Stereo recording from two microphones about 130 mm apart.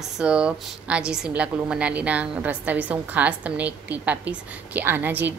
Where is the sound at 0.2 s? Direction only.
10° right (ahead or behind).